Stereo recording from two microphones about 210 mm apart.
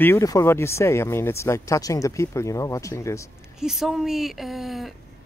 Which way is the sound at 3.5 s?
Centre (ahead or behind).